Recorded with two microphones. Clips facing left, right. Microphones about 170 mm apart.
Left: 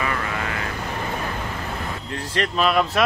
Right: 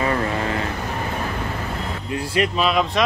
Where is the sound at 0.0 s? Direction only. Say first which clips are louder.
Right 5 dB; 30° right (ahead or behind).